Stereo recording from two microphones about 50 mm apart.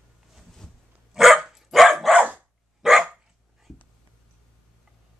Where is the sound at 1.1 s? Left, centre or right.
Centre.